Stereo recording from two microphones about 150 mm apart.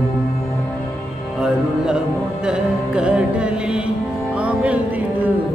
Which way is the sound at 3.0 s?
5° right (ahead or behind).